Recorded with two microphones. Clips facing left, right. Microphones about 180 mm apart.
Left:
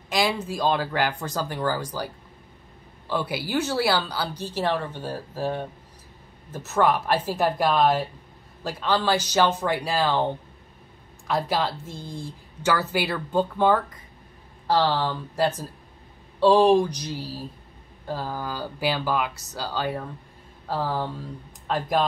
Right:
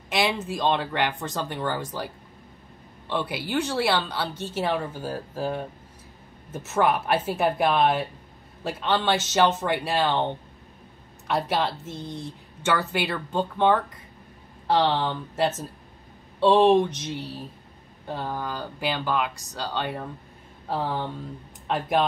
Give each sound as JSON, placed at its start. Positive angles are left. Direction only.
{"t": 0.1, "sound": "a woman's voice", "side_deg": 0}
{"t": 6.7, "sound": "a woman's voice", "side_deg": -5}
{"t": 11.2, "sound": "a woman's voice", "side_deg": 0}
{"t": 11.9, "sound": "speech", "side_deg": -25}
{"t": 12.6, "sound": "a woman's voice", "side_deg": 0}